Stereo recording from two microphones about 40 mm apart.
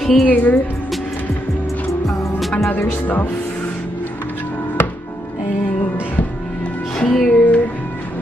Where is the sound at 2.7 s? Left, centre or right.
Left.